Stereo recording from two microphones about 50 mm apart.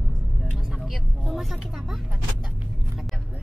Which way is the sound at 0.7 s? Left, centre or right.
Centre.